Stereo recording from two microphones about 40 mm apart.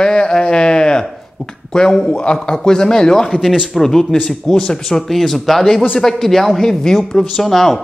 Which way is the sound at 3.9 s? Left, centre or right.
Centre.